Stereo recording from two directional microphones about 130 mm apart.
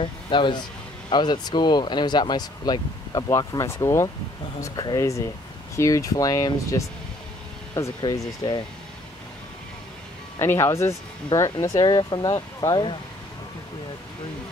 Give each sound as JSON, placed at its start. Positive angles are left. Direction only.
{"t": 0.0, "sound": "speech", "side_deg": 40}
{"t": 10.4, "sound": "speech", "side_deg": 20}